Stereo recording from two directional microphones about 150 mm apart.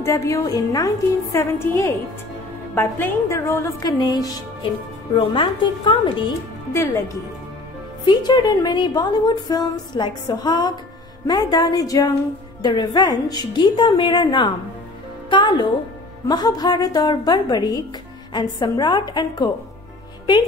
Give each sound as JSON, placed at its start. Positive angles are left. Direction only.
{"t": 0.0, "sound": "a woman's voice", "side_deg": 20}
{"t": 8.0, "sound": "a woman's voice", "side_deg": 30}